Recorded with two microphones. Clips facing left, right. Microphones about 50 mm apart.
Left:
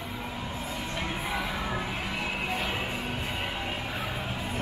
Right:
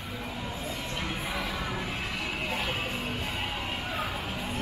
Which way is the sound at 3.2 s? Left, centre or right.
Centre.